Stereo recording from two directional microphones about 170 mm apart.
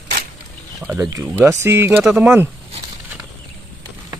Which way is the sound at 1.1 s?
15° right (ahead or behind).